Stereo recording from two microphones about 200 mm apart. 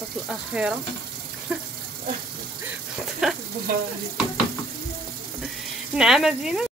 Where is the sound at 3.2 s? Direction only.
Centre (ahead or behind).